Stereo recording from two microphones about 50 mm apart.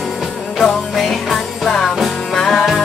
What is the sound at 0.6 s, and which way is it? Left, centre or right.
Music, centre.